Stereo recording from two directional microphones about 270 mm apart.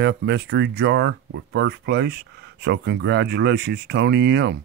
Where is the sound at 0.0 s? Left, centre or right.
Right.